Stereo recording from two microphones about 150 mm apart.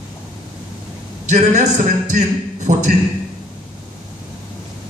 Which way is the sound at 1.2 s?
55° right (ahead or behind).